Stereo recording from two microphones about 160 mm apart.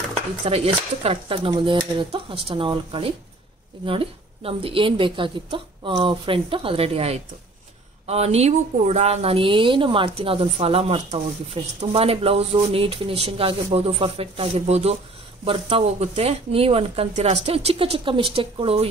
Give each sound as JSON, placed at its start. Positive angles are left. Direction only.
{"t": 0.5, "sound": "a woman's voice", "side_deg": -40}